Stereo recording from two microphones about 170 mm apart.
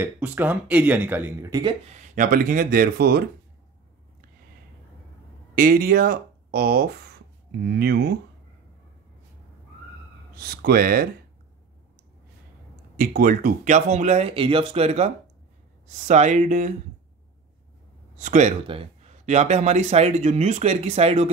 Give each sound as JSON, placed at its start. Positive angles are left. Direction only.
{"t": 0.0, "sound": "speech", "side_deg": -10}
{"t": 1.5, "sound": "speech", "side_deg": -25}
{"t": 1.9, "sound": "speech", "side_deg": -55}
{"t": 5.5, "sound": "speech", "side_deg": -55}
{"t": 7.6, "sound": "speech", "side_deg": -70}
{"t": 10.3, "sound": "speech", "side_deg": -65}
{"t": 12.9, "sound": "speech", "side_deg": -55}
{"t": 16.1, "sound": "speech", "side_deg": -45}
{"t": 18.1, "sound": "speech", "side_deg": -45}
{"t": 18.7, "sound": "speech", "side_deg": -35}